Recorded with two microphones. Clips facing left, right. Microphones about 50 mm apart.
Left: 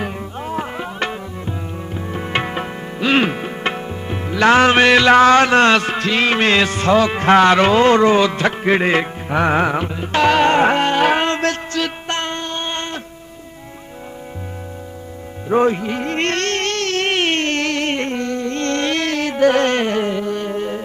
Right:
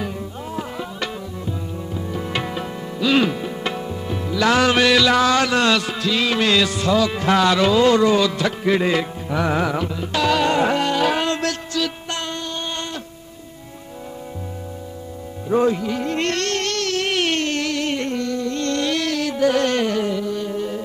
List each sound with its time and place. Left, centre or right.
0.0 s music: left
2.1 s music: left
15.5 s a sound: left